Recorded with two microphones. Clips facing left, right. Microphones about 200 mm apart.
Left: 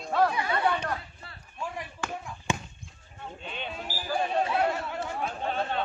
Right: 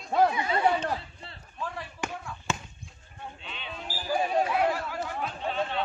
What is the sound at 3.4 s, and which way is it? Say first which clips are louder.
Sheep: left 6 dB; 45° left (ahead or behind).